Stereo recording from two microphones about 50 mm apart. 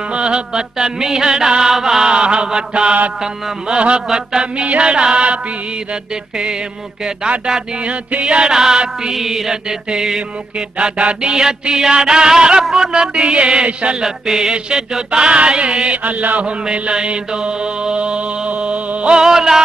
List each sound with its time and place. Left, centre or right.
0.1 s chant: centre
4.6 s mantra: right
7.2 s chant: centre
12.6 s a sound: centre
12.9 s mantra: centre
14.0 s chant: centre
15.0 s mantra: right
16.6 s mantra: centre
19.2 s chant: centre